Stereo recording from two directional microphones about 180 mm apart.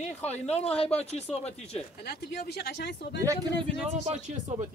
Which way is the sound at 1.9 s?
60° left (ahead or behind).